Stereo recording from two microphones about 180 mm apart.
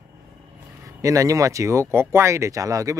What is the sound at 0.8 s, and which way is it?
Speech, 20° right (ahead or behind).